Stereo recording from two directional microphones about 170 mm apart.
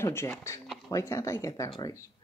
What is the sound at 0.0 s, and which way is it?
Speech, 15° left (ahead or behind).